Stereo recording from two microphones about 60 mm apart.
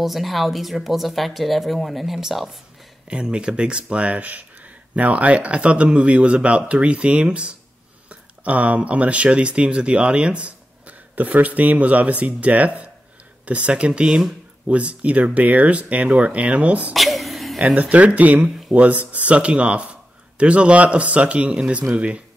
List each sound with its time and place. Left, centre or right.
0.0 s speech: centre
3.1 s speech: centre
14.0 s speech: centre
14.7 s speech: right
16.9 s a sound: centre
17.6 s speech: right